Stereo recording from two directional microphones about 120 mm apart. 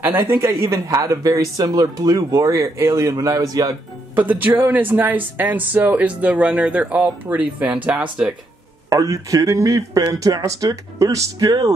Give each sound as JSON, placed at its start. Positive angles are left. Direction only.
{"t": 0.0, "sound": "speech", "side_deg": -20}
{"t": 4.1, "sound": "speech", "side_deg": -15}
{"t": 8.9, "sound": "speech", "side_deg": -30}